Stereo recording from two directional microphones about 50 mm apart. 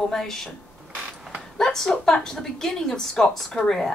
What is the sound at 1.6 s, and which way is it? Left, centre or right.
A woman's voice, centre.